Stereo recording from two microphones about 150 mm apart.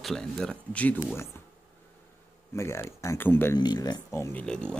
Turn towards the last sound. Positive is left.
turn(degrees=5)  # may be behind; listen again after turning